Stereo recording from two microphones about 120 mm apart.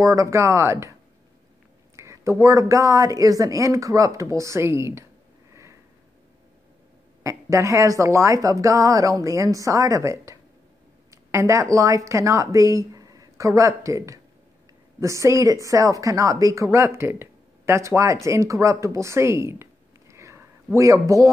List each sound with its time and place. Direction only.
0.0 s a woman's voice: 25° right (ahead or behind)
2.0 s a woman's voice: 25° right (ahead or behind)
5.5 s sniff: 25° right (ahead or behind)
7.2 s a woman's voice: 25° right (ahead or behind)